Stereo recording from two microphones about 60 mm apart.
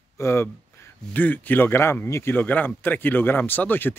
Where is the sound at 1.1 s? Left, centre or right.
Left.